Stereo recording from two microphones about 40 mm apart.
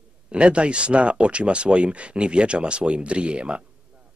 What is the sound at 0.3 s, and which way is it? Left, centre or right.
A man's voice, right.